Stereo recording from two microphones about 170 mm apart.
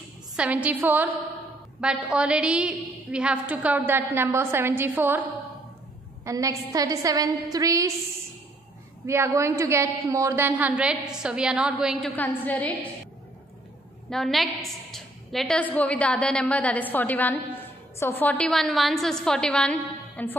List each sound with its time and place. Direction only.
0.4 s a woman's voice: 10° right (ahead or behind)
9.0 s a woman's voice: 15° right (ahead or behind)
12.2 s a woman's voice: 10° left (ahead or behind)
14.1 s a woman's voice: centre (ahead or behind)